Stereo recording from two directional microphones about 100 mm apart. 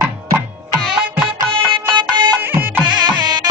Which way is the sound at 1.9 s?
50° right (ahead or behind).